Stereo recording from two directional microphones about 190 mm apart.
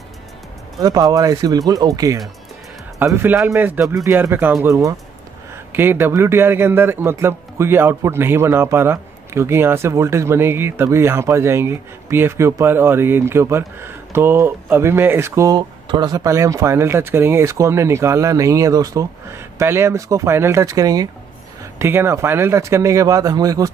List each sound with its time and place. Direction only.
0.7 s a man's voice: 20° right (ahead or behind)